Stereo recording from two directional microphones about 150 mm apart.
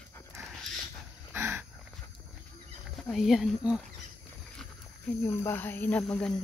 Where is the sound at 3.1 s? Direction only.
Centre (ahead or behind).